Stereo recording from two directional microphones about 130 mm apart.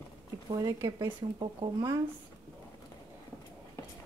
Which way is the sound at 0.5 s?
30° right (ahead or behind).